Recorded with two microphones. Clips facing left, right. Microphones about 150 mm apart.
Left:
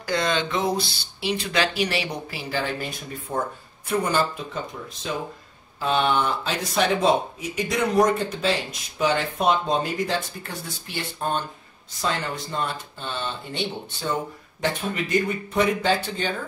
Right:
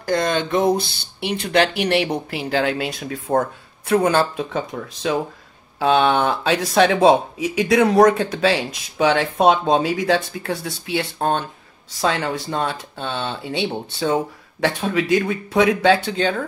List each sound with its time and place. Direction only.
0.0 s speech: 50° right (ahead or behind)
2.3 s speech: 75° right (ahead or behind)
3.9 s speech: 75° right (ahead or behind)
12.0 s speech: 85° right; by 16.4 s 70° right (ahead or behind)